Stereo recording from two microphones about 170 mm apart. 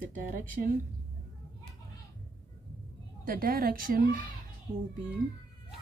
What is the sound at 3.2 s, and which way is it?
Speech, 60° right (ahead or behind).